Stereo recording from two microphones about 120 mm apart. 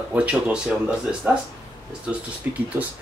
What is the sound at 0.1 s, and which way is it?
Speech, 10° right (ahead or behind).